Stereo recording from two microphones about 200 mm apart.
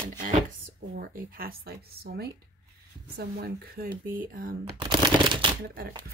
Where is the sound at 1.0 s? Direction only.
45° right (ahead or behind).